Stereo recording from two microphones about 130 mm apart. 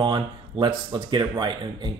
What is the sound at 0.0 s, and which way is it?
Speech, 40° right (ahead or behind).